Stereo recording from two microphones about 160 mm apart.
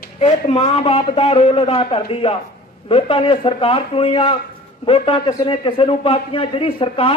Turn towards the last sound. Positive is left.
turn(degrees=35)  # may be behind; listen again after turning